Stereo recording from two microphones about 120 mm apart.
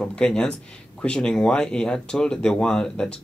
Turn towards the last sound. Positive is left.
turn(degrees=5)  # may be behind; listen again after turning